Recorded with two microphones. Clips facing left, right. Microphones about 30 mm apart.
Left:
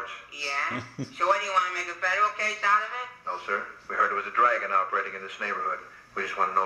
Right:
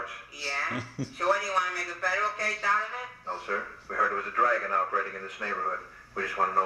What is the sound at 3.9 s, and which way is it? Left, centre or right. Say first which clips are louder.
Speech: left 2 dB; left.